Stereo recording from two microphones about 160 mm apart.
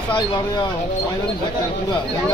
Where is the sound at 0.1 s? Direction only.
30° left (ahead or behind).